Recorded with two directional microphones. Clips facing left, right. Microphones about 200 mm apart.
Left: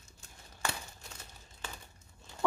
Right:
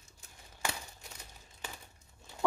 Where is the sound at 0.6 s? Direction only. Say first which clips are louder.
Even; 15° right (ahead or behind).